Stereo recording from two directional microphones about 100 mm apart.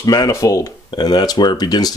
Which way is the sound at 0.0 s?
35° left (ahead or behind).